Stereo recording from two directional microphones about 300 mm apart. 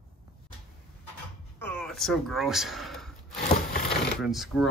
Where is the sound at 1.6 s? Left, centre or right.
Centre.